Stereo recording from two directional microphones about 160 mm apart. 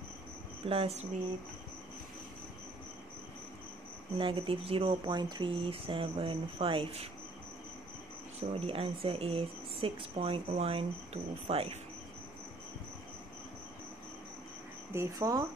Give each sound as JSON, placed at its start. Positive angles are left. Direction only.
{"t": 0.7, "sound": "speech", "side_deg": -40}
{"t": 4.2, "sound": "speech", "side_deg": -35}
{"t": 8.4, "sound": "speech", "side_deg": -35}
{"t": 14.9, "sound": "speech", "side_deg": -20}